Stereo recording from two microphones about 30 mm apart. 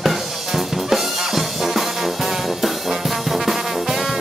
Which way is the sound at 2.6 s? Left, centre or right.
Centre.